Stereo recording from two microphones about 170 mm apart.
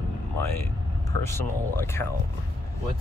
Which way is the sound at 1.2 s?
15° left (ahead or behind).